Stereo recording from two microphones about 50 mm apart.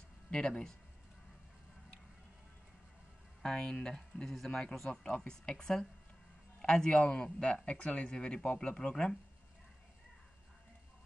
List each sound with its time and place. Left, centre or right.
0.3 s speech: centre
3.4 s speech: centre